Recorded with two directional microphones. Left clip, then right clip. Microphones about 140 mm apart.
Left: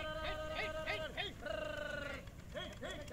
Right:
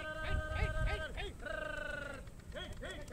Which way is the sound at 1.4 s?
20° right (ahead or behind).